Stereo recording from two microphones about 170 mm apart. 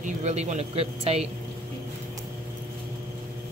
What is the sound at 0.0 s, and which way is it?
Speech, 40° right (ahead or behind).